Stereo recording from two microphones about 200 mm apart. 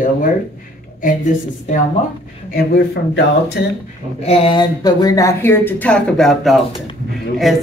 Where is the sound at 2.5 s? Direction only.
50° left (ahead or behind).